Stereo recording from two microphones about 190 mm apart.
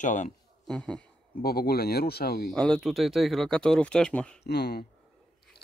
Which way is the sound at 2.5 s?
5° left (ahead or behind).